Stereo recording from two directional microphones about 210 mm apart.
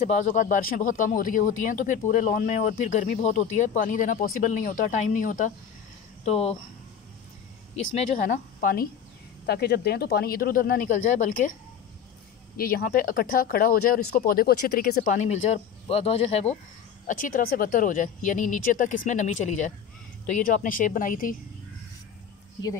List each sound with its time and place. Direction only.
0.0 s speech: 35° left (ahead or behind)
7.7 s speech: 35° left (ahead or behind)
12.5 s speech: 45° left (ahead or behind)